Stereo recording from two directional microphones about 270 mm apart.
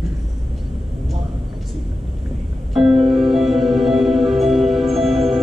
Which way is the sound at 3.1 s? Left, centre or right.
Centre.